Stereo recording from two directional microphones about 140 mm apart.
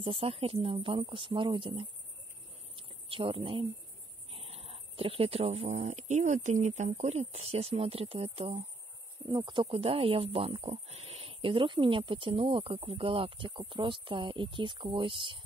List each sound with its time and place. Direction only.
0.0 s speech: 40° right (ahead or behind)
2.7 s a sound: 40° right (ahead or behind)
4.3 s speech: 45° right (ahead or behind)
9.3 s speech: 35° right (ahead or behind)